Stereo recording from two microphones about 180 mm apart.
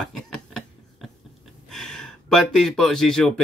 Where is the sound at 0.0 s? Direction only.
5° left (ahead or behind).